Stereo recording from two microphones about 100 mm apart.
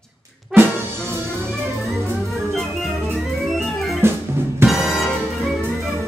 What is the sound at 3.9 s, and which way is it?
Music, 25° right (ahead or behind).